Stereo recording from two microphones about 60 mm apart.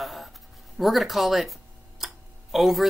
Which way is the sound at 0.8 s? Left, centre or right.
Centre.